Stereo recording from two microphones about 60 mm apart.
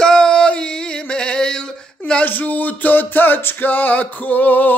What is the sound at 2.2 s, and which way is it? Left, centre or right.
Music, left.